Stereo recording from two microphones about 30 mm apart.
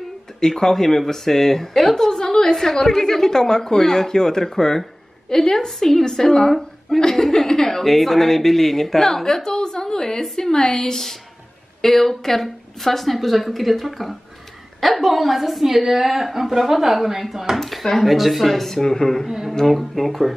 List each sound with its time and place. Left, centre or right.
0.4 s a woman's voice: centre
2.0 s a woman's voice: left
7.0 s chuckle: centre
7.8 s a woman's voice: centre
18.8 s a woman's voice: centre
19.2 s speech: centre
19.6 s speech: centre